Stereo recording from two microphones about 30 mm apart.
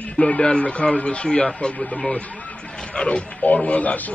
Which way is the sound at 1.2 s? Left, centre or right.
Left.